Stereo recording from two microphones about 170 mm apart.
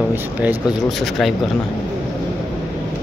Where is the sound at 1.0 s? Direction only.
Centre (ahead or behind).